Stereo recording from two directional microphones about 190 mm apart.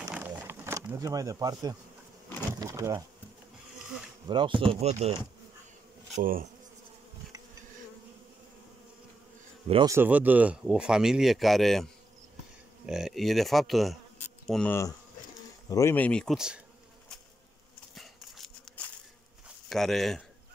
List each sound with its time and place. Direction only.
0.1 s a sound: 10° right (ahead or behind)
2.6 s speech: 15° right (ahead or behind)
4.3 s speech: 25° right (ahead or behind)
6.2 s bee: 50° right (ahead or behind)
9.8 s speech: 10° right (ahead or behind)
17.9 s a sound: centre (ahead or behind)